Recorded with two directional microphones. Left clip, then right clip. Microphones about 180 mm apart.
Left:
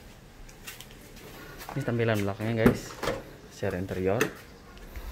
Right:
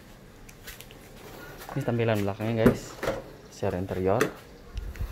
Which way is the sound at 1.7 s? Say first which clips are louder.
Right 1 dB; 5° right (ahead or behind).